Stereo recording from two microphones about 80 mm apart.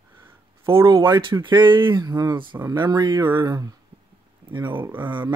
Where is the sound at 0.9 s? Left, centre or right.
Right.